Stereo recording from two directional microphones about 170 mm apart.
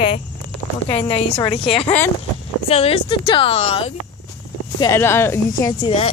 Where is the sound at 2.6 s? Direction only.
35° left (ahead or behind).